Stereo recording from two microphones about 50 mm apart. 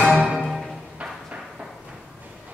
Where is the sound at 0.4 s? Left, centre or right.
Centre.